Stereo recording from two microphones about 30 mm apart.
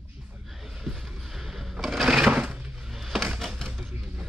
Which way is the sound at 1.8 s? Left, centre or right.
Centre.